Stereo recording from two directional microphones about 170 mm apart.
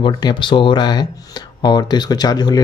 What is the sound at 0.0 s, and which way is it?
Speech, 30° left (ahead or behind).